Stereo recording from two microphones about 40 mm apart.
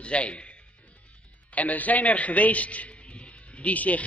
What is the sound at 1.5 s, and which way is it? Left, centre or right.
A man's voice, left.